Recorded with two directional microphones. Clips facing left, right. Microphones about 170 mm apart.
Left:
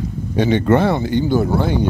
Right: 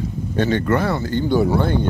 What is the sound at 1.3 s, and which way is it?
Speech, centre (ahead or behind).